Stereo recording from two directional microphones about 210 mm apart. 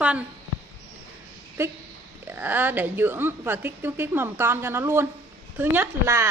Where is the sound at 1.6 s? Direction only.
10° right (ahead or behind).